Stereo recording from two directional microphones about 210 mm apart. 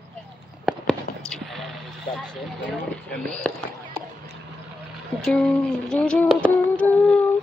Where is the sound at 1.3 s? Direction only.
Centre (ahead or behind).